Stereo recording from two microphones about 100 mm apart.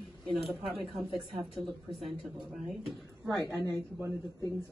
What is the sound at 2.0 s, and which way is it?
Speech, 5° right (ahead or behind).